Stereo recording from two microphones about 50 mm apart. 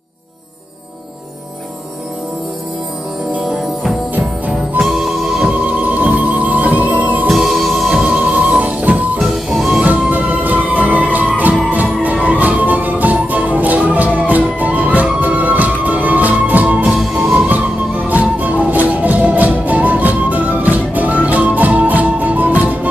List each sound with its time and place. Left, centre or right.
4.8 s music: centre
5.5 s music: right
7.2 s music: centre
8.1 s music: right
9.2 s music: centre
9.8 s music: right
17.0 s music: centre
18.0 s music: right